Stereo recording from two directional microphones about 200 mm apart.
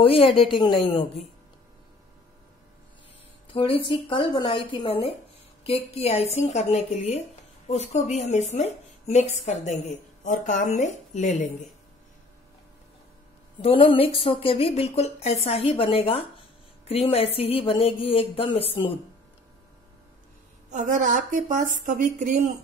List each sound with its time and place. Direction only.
0.0 s speech: 25° left (ahead or behind)
3.4 s a woman's voice: 25° left (ahead or behind)
13.6 s speech: 25° left (ahead or behind)
20.7 s a woman's voice: 40° right (ahead or behind)